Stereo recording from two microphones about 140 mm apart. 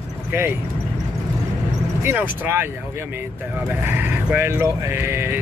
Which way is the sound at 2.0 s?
15° right (ahead or behind).